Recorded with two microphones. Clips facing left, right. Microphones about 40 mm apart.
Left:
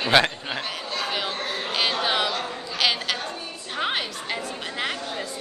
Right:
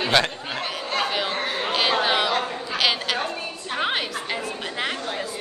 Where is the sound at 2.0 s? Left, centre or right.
Centre.